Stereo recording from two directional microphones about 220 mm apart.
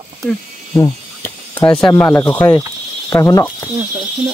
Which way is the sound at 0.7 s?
10° left (ahead or behind).